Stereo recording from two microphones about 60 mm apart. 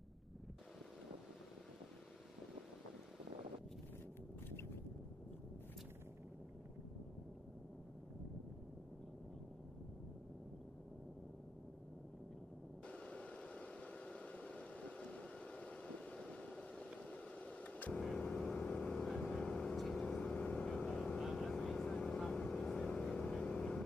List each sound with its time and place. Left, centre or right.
12.8 s a sound: centre
17.9 s vehicle: centre
18.6 s vehicle: left
18.9 s vehicle: centre
20.3 s vehicle: centre